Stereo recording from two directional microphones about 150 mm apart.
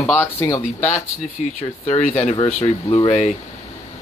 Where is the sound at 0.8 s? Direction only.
50° left (ahead or behind).